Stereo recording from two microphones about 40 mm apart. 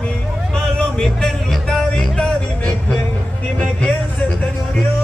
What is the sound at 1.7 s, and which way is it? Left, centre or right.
Music, centre.